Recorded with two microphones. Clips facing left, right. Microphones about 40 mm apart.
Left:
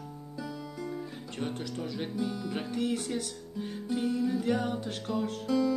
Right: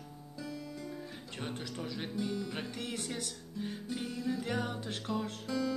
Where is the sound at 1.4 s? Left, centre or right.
Centre.